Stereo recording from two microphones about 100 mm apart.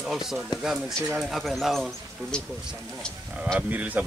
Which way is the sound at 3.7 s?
15° right (ahead or behind).